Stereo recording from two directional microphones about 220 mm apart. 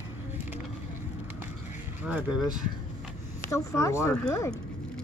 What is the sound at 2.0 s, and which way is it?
Speech, 5° right (ahead or behind).